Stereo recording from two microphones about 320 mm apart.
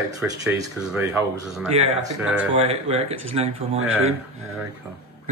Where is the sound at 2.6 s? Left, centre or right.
Centre.